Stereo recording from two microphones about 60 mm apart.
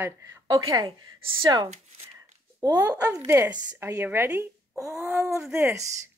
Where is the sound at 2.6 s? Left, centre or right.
Right.